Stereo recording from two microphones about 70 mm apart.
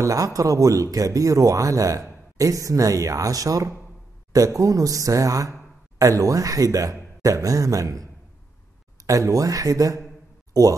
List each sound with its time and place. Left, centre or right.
0.0 s speech: right